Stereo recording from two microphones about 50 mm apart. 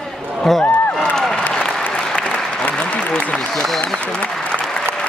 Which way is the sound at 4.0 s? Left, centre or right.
Left.